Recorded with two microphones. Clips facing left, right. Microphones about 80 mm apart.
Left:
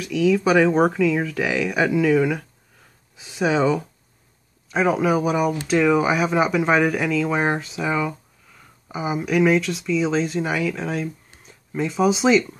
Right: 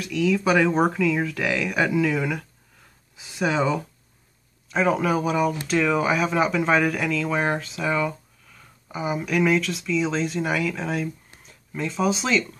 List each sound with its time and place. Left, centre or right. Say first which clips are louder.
0.0 s speech: left 3 dB; centre